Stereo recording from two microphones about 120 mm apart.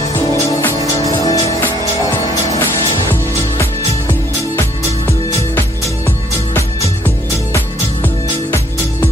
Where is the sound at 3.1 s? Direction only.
20° left (ahead or behind).